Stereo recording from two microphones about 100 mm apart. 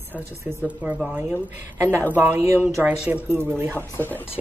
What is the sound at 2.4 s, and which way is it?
Speech, 25° right (ahead or behind).